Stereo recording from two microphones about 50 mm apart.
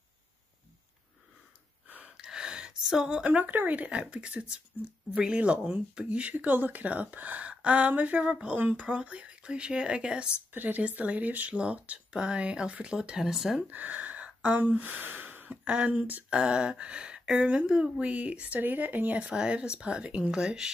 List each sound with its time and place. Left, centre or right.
2.0 s gasp: centre
3.3 s speech: right
6.3 s speech: right
8.5 s speech: right
8.8 s speech: right
10.5 s speech: right; by 13.6 s centre
13.6 s speech: right
18.6 s speech: right
19.2 s speech: centre